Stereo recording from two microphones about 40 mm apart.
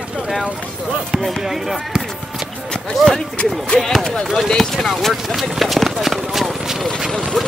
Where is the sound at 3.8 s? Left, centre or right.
Centre.